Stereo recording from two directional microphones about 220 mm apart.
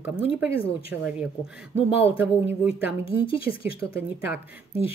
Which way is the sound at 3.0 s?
25° left (ahead or behind).